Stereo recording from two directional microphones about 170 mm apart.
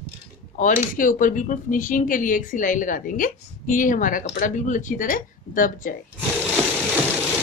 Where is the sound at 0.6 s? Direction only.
50° left (ahead or behind).